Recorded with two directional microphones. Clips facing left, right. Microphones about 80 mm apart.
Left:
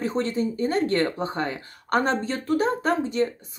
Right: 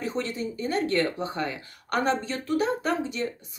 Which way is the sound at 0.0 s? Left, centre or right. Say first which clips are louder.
Left 5 dB; left.